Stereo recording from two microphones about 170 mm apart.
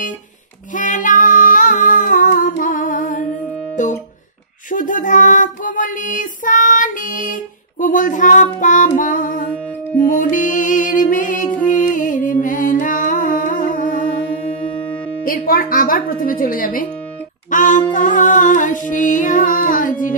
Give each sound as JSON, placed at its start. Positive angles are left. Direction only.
{"t": 0.7, "sound": "female singing", "side_deg": 50}
{"t": 3.8, "sound": "music", "side_deg": 45}
{"t": 4.6, "sound": "child singing", "side_deg": 50}
{"t": 7.8, "sound": "a sound", "side_deg": 50}
{"t": 8.5, "sound": "music", "side_deg": 50}
{"t": 15.2, "sound": "speech", "side_deg": 55}
{"t": 17.5, "sound": "a sound", "side_deg": 50}
{"t": 17.9, "sound": "music", "side_deg": 50}